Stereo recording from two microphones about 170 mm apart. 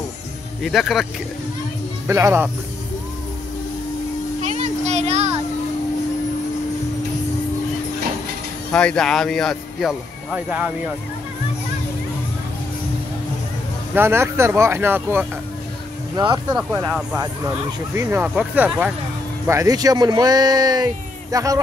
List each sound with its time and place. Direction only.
0.6 s speech: centre (ahead or behind)
2.0 s speech: 15° right (ahead or behind)
4.4 s a sound: 45° right (ahead or behind)
8.7 s speech: 5° left (ahead or behind)
13.9 s speech: 15° right (ahead or behind)
16.2 s speech: 25° right (ahead or behind)
16.5 s speech: centre (ahead or behind)
17.2 s speech: 20° right (ahead or behind)